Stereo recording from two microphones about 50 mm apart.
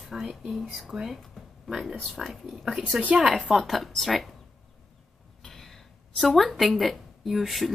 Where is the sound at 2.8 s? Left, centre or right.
Right.